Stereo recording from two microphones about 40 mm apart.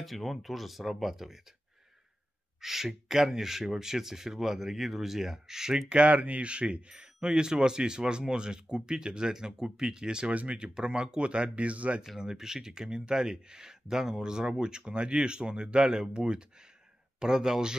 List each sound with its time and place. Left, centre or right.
0.0 s speech: centre
2.6 s speech: centre
5.9 s speech: right
10.3 s speech: right
10.6 s speech: right
12.2 s speech: centre